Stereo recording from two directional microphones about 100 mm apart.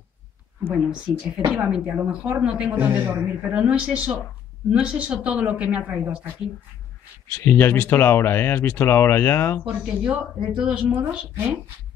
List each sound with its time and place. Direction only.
0.8 s speech: 5° right (ahead or behind)
7.3 s speech: 25° left (ahead or behind)
9.7 s speech: 15° right (ahead or behind)